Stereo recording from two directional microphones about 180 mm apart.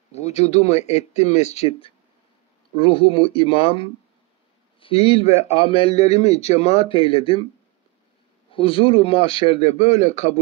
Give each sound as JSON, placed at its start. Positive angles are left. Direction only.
{"t": 0.1, "sound": "a man's voice", "side_deg": 35}
{"t": 8.5, "sound": "a man's voice", "side_deg": 30}